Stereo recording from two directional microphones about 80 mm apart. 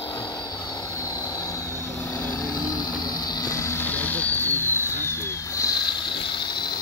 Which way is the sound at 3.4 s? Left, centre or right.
Left.